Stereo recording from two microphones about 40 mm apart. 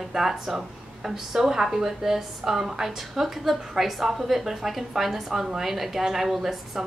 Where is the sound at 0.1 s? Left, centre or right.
Centre.